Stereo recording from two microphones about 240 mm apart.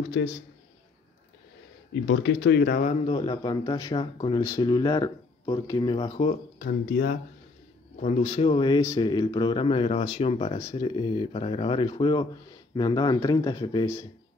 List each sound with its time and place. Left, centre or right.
0.2 s speech: left
2.0 s speech: left
3.1 s speech: left
6.6 s speech: left
8.0 s speech: left